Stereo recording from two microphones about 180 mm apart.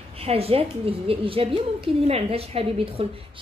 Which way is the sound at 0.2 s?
35° right (ahead or behind).